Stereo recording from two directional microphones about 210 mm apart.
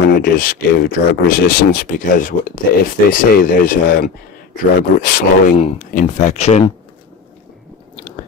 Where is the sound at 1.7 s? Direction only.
40° left (ahead or behind).